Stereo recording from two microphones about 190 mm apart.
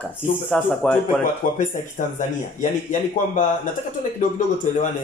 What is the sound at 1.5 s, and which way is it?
A man's voice, 40° left (ahead or behind).